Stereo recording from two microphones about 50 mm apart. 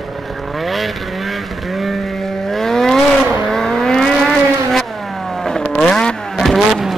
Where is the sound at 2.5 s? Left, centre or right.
Centre.